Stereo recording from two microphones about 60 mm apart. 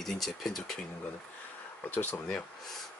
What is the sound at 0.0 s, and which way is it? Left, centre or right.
Speech, centre.